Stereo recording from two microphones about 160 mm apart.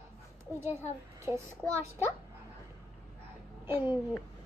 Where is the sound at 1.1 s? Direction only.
15° right (ahead or behind).